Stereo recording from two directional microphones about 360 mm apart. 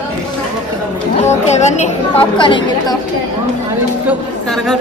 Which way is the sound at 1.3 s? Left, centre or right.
Centre.